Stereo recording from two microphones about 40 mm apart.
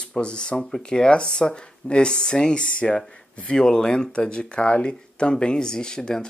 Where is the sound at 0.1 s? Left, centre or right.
Left.